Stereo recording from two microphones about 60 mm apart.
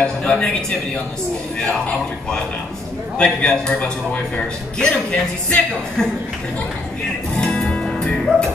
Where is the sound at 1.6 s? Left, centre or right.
Centre.